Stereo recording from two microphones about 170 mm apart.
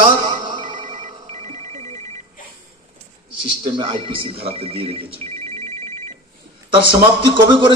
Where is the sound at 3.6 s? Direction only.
30° right (ahead or behind).